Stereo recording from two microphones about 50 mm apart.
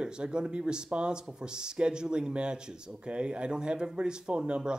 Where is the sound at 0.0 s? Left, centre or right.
Centre.